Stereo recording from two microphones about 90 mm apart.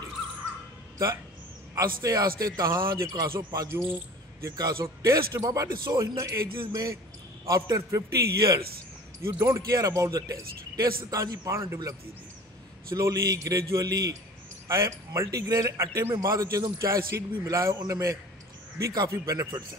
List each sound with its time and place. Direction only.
1.8 s a man's voice: 40° right (ahead or behind)
4.7 s a man's voice: 30° right (ahead or behind)
12.9 s a man's voice: 40° right (ahead or behind)